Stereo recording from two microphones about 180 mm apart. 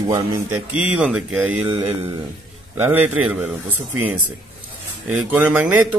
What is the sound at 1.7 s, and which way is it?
Mantra, 30° right (ahead or behind).